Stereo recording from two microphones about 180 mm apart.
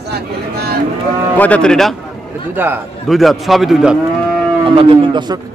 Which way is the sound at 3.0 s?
Centre (ahead or behind).